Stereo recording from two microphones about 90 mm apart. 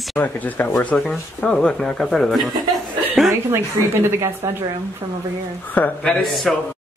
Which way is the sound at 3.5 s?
30° right (ahead or behind).